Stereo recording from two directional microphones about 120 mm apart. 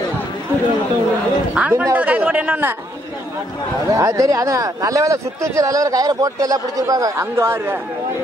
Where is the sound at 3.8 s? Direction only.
25° right (ahead or behind).